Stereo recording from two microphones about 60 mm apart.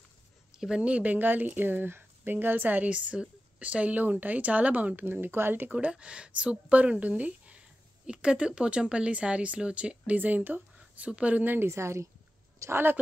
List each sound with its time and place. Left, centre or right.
0.5 s speech: centre; by 5.7 s right
5.7 s speech: right
10.1 s speech: right
10.8 s speech: centre; by 11.7 s right
11.7 s a woman's voice: right